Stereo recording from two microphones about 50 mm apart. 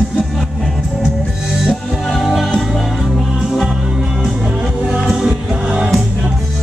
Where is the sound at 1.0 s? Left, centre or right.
Centre.